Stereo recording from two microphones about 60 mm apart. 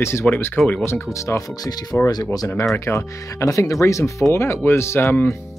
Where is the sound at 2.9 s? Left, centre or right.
Left.